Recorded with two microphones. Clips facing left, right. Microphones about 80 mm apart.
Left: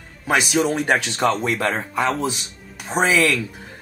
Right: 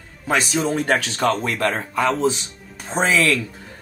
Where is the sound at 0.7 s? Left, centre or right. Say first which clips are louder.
Even; centre.